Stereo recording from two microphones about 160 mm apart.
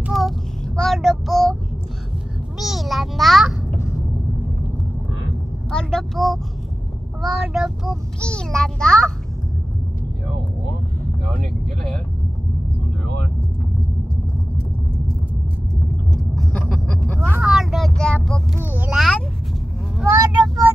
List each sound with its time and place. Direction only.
0.0 s child singing: centre (ahead or behind)
2.6 s a sound: centre (ahead or behind)
5.7 s child singing: 5° left (ahead or behind)
16.3 s vehicle: 5° left (ahead or behind)
17.4 s vehicle: 5° right (ahead or behind)
18.6 s a sound: 10° right (ahead or behind)
20.1 s vehicle: 20° right (ahead or behind)